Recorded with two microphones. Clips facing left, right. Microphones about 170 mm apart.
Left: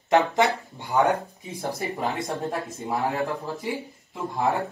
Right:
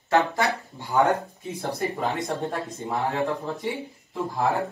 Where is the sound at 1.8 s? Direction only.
Centre (ahead or behind).